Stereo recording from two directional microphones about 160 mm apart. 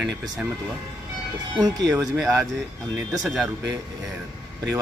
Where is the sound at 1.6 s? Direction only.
25° right (ahead or behind).